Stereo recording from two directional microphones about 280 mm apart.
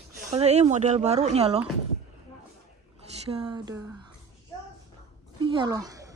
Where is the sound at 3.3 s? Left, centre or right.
Centre.